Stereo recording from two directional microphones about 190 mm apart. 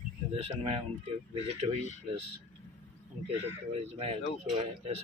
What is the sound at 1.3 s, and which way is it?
Speech, 30° right (ahead or behind).